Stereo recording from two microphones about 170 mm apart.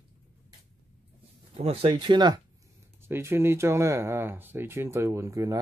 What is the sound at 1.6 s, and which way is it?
Speech, 35° right (ahead or behind).